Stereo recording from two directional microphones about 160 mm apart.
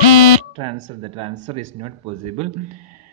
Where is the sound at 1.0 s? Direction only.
30° right (ahead or behind).